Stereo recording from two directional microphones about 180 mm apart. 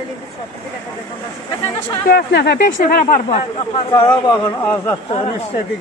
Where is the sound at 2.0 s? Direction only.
60° left (ahead or behind).